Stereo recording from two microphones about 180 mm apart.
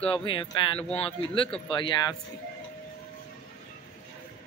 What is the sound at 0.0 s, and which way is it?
Speech, 30° left (ahead or behind).